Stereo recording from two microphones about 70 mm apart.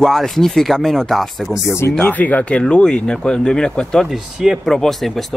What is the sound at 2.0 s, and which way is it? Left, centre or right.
Speech, left.